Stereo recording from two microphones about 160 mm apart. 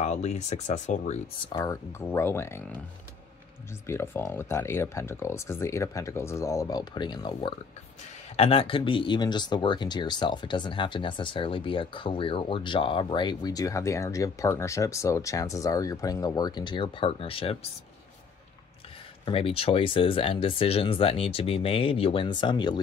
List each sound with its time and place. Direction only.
0.0 s speech: 45° left (ahead or behind)
1.5 s speech: 20° left (ahead or behind)
3.8 s speech: 15° left (ahead or behind); by 17.6 s 35° left (ahead or behind)
19.2 s speech: 35° left (ahead or behind)